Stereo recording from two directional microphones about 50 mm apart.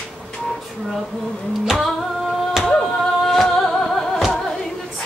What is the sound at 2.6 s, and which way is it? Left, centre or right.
Music, centre.